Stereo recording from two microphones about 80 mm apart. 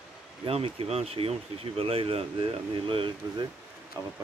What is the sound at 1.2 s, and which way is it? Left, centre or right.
Speech, right.